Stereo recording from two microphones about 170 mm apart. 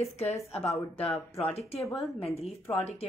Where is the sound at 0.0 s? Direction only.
40° left (ahead or behind).